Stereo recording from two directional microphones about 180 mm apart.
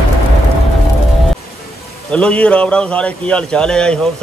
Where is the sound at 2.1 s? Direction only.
5° left (ahead or behind).